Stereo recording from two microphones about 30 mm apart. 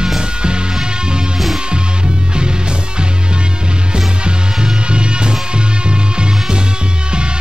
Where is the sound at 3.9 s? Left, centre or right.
Right.